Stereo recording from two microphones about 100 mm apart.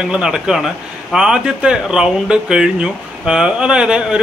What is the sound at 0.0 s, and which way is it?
Speech, 10° right (ahead or behind).